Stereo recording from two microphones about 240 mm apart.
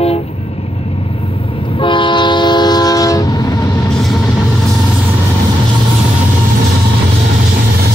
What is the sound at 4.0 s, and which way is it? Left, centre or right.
Vehicle, centre.